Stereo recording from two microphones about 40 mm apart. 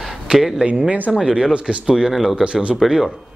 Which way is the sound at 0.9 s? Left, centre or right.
Right.